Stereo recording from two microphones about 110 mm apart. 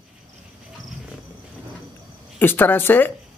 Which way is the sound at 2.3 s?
15° left (ahead or behind).